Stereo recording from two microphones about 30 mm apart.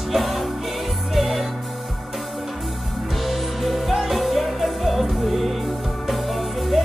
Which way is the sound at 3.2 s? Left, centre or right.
Centre.